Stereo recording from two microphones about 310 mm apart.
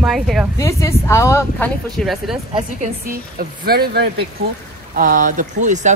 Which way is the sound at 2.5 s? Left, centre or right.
Right.